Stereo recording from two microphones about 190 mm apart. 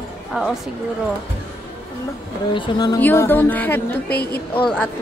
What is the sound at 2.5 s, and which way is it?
Speech, 25° left (ahead or behind).